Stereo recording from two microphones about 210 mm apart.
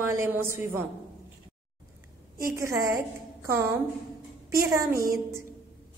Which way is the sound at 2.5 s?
15° right (ahead or behind).